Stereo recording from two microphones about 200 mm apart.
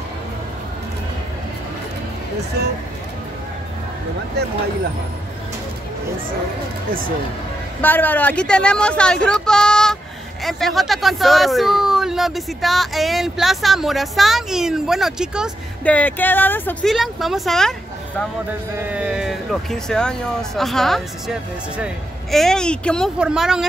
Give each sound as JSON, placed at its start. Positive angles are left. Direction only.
{"t": 2.6, "sound": "speech", "side_deg": -55}
{"t": 4.4, "sound": "speech", "side_deg": -55}
{"t": 7.8, "sound": "speech", "side_deg": 10}